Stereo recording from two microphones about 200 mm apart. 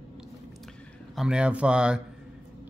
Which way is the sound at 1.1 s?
5° right (ahead or behind).